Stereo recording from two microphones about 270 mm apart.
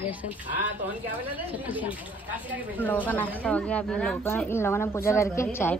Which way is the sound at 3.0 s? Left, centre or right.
Centre.